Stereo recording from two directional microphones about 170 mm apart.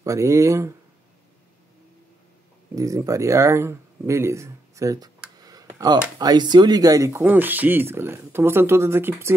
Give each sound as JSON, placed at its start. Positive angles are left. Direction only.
{"t": 0.0, "sound": "speech", "side_deg": -20}
{"t": 2.7, "sound": "speech", "side_deg": -20}